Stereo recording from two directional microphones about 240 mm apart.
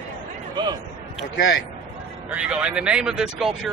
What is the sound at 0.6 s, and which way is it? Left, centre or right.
Speech, centre.